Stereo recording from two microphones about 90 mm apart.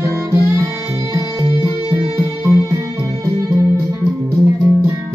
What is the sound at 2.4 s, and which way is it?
Music, 30° right (ahead or behind).